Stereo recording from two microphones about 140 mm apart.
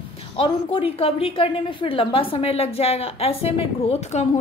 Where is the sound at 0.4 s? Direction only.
40° left (ahead or behind).